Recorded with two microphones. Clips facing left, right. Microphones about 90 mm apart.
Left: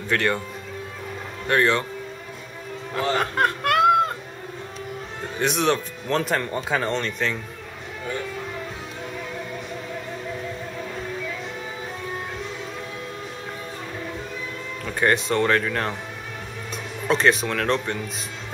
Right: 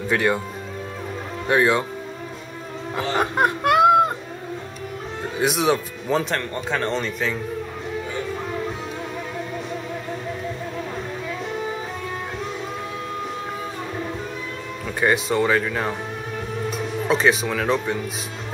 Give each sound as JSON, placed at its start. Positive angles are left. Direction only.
{"t": 0.1, "sound": "speech", "side_deg": -10}
{"t": 1.5, "sound": "speech", "side_deg": -15}
{"t": 2.9, "sound": "music", "side_deg": -15}
{"t": 5.4, "sound": "speech", "side_deg": -5}
{"t": 6.2, "sound": "speech", "side_deg": 5}
{"t": 14.9, "sound": "speech", "side_deg": -5}